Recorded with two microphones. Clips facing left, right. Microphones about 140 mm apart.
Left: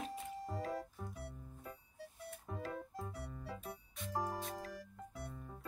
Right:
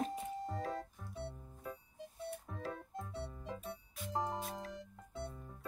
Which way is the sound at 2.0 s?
25° right (ahead or behind).